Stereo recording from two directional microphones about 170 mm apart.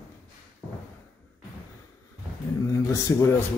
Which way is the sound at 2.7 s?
20° left (ahead or behind).